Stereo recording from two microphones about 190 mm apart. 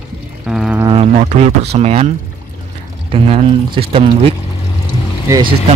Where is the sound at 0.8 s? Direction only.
30° right (ahead or behind).